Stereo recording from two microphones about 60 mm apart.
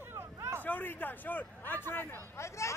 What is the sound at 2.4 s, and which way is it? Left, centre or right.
Speech, left.